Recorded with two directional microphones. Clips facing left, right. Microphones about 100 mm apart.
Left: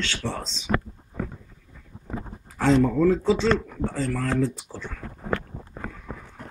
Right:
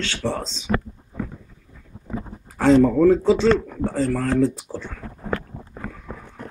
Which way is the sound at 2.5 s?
45° right (ahead or behind).